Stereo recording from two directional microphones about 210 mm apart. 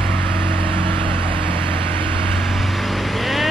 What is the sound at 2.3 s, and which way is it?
Vehicle, centre (ahead or behind).